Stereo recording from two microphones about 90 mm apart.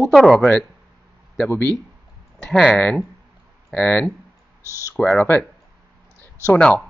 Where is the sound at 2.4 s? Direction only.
5° left (ahead or behind).